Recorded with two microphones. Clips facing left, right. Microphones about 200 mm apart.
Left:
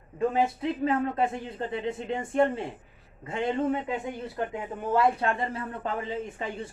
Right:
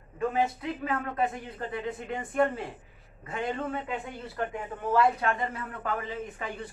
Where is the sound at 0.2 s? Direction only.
25° left (ahead or behind).